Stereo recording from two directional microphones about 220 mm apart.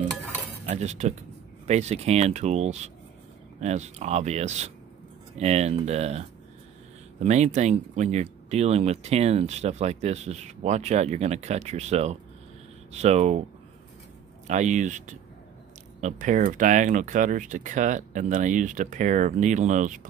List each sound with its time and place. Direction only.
0.7 s speech: 30° right (ahead or behind)
7.2 s speech: 30° right (ahead or behind)
14.5 s speech: 35° right (ahead or behind)